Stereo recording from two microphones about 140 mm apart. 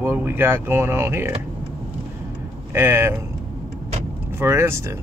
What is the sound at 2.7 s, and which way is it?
Speech, 15° right (ahead or behind).